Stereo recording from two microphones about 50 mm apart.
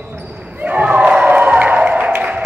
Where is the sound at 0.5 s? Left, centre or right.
Right.